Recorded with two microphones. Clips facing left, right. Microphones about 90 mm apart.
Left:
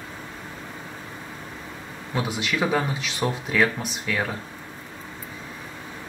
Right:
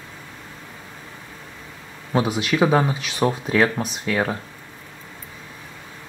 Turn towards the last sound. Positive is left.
turn(degrees=-25)  # may be behind; listen again after turning